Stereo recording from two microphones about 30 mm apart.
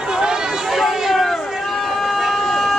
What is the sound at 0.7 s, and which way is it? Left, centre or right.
Chatter, centre.